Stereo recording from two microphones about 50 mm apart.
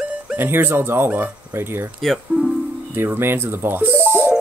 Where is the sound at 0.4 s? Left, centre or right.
Right.